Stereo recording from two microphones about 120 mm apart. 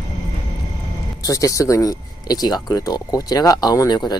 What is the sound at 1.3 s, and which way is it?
Speech, 30° left (ahead or behind).